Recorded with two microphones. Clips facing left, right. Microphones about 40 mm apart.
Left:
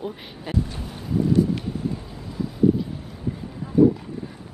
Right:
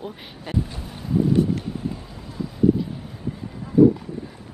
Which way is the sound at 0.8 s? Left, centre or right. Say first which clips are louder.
Even; centre.